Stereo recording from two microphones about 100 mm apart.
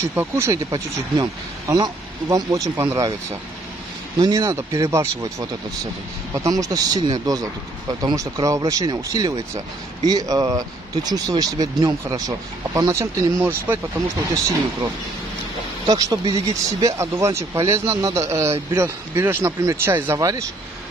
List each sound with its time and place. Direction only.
0.1 s speech: 25° right (ahead or behind)
1.1 s speech: 40° right (ahead or behind)
4.2 s speech: 35° right (ahead or behind); by 13.7 s 20° right (ahead or behind)
15.9 s speech: 35° right (ahead or behind)
20.2 s speech: 35° right (ahead or behind)